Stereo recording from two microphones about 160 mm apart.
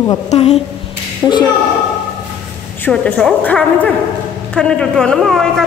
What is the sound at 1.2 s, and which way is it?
Speech, 15° left (ahead or behind).